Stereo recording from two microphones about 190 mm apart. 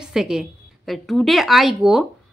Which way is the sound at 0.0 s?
5° right (ahead or behind).